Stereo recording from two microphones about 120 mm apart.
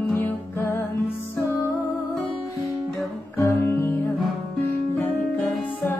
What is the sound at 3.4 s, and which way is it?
Music, 20° left (ahead or behind).